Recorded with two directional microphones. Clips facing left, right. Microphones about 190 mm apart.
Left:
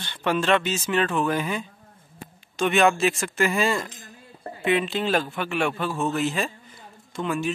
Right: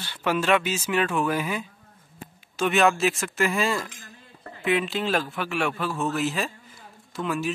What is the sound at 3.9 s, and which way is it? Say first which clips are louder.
Dishes: left 2 dB; 35° left (ahead or behind).